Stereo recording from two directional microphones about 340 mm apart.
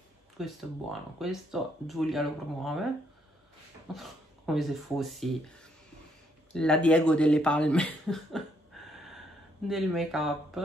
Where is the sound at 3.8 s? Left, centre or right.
Centre.